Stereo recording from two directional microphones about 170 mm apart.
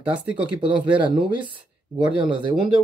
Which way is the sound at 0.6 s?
30° right (ahead or behind).